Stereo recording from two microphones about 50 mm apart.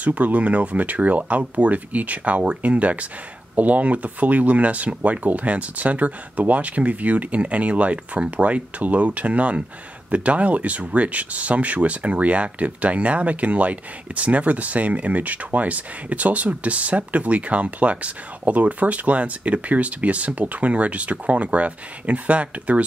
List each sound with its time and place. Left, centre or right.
0.0 s speech: right